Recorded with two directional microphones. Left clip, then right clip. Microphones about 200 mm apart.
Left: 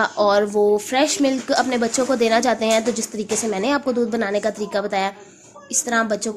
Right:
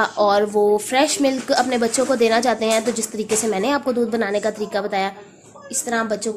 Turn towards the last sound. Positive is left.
turn(degrees=20)  # may be behind; listen again after turning